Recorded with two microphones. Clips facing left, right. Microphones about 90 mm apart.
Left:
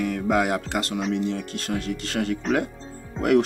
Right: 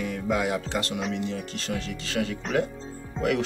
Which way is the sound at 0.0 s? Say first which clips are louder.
Left 4 dB; 60° left (ahead or behind).